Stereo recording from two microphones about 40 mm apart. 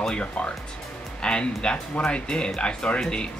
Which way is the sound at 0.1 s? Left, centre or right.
Left.